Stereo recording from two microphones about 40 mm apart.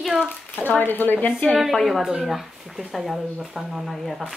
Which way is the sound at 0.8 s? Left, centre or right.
Left.